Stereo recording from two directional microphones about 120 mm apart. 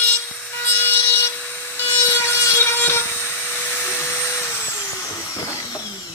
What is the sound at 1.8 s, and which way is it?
Vehicle, 20° left (ahead or behind).